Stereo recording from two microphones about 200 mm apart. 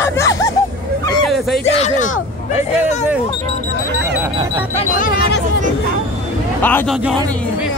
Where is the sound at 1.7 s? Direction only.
35° left (ahead or behind).